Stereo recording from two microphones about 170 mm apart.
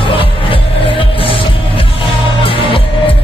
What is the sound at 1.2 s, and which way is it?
Music, 30° left (ahead or behind).